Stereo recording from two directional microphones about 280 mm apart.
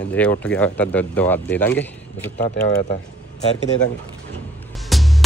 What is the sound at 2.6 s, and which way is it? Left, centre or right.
Speech, left.